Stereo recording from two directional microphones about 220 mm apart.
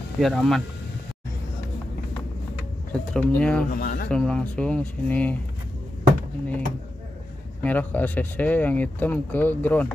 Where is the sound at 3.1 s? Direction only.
5° left (ahead or behind).